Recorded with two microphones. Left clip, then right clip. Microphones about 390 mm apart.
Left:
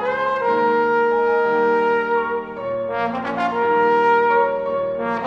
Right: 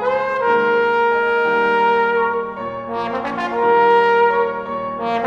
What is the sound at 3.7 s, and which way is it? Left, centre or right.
Music, left.